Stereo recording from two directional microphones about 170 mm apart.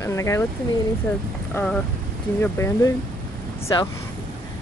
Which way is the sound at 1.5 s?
5° left (ahead or behind).